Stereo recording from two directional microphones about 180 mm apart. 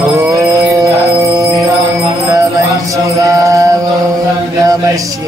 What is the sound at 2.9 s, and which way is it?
Mantra, 15° right (ahead or behind).